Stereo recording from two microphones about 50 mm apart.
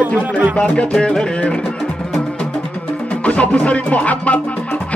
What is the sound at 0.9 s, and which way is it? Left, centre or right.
Music, centre.